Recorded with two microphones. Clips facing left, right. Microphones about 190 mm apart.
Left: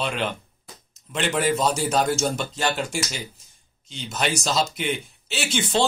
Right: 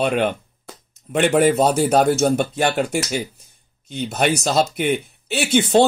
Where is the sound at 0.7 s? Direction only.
70° right (ahead or behind).